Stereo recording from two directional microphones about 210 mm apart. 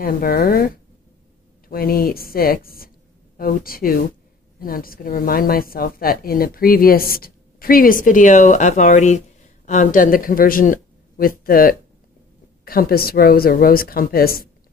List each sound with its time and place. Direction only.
0.0 s a woman's voice: 45° left (ahead or behind)
1.7 s a woman's voice: 45° left (ahead or behind)